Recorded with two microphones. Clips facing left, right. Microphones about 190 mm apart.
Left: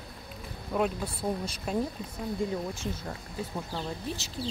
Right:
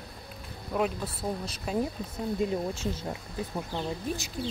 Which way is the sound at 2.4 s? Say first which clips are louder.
Right 3 dB; 20° right (ahead or behind).